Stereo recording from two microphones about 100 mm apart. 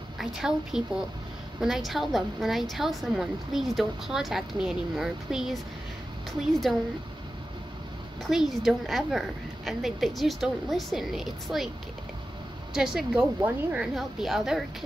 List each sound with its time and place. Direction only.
0.2 s a woman's voice: 5° right (ahead or behind)
8.2 s a woman's voice: centre (ahead or behind)
12.7 s a woman's voice: 5° right (ahead or behind)
13.4 s a woman's voice: 20° right (ahead or behind)
13.7 s a woman's voice: centre (ahead or behind)